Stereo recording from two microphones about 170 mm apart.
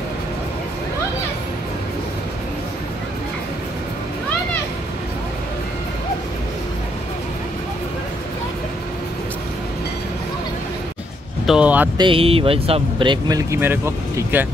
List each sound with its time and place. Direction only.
11.4 s speech: 5° right (ahead or behind)
12.0 s speech: 30° right (ahead or behind); by 14.5 s 15° right (ahead or behind)